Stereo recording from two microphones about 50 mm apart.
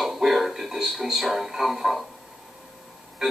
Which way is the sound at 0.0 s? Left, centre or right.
Centre.